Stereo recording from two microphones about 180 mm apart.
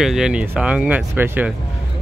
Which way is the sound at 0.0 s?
5° right (ahead or behind).